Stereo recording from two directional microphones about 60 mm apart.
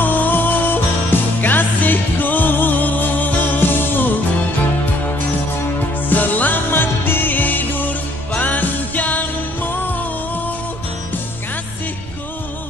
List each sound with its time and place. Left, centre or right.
0.0 s music: left
6.0 s music: left